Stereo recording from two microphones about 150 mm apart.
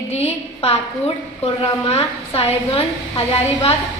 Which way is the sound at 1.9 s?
40° left (ahead or behind).